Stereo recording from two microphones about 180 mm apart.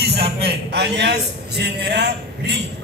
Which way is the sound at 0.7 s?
70° right (ahead or behind).